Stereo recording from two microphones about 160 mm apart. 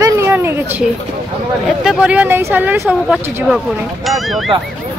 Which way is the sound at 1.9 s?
5° right (ahead or behind).